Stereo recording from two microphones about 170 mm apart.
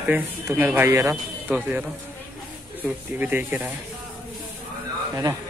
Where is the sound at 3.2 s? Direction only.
10° right (ahead or behind).